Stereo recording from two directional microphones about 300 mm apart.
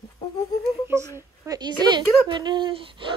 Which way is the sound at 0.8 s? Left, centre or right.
Centre.